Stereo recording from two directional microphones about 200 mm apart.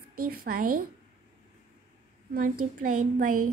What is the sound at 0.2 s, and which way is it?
Speech, 45° right (ahead or behind).